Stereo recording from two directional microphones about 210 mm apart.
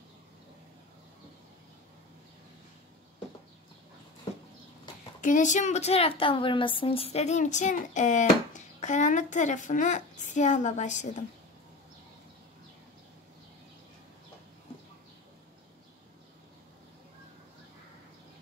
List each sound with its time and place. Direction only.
5.2 s a woman's voice: 35° left (ahead or behind)